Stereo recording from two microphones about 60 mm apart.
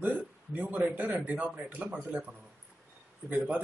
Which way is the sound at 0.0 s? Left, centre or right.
Right.